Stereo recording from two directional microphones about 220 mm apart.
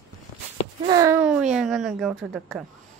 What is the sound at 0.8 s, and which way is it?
Speech, 15° right (ahead or behind).